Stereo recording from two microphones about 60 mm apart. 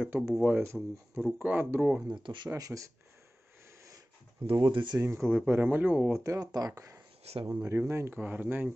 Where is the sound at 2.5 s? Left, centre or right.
Right.